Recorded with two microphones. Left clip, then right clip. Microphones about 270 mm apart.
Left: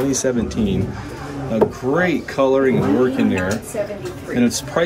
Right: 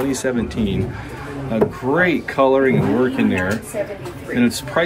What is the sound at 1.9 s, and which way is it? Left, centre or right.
Speech, centre.